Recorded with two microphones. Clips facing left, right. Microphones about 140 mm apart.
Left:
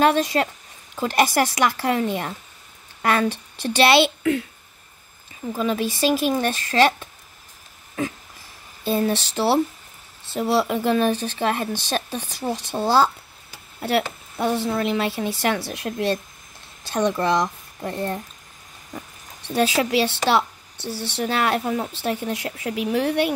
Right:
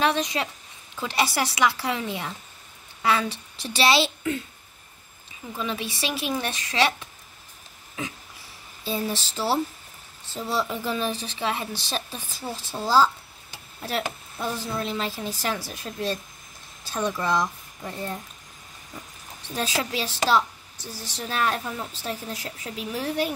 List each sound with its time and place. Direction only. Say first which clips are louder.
0.0 s a woman's voice: left 6 dB; 50° left (ahead or behind); by 4.5 s 70° left (ahead or behind)
5.6 s speech: left 8 dB; 45° left (ahead or behind)
8.8 s speech: left 7 dB; 60° left (ahead or behind)
13.7 s a woman's voice: left 7 dB; 75° left (ahead or behind); by 18.2 s 60° left (ahead or behind)
19.5 s a woman's voice: left 8 dB; 80° left
22.7 s a woman's voice: left 8 dB; 70° left (ahead or behind)